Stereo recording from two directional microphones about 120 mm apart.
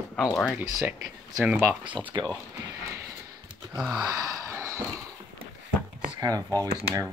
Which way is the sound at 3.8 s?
5° right (ahead or behind).